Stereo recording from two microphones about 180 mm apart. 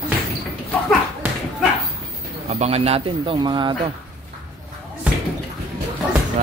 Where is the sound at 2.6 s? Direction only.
35° right (ahead or behind).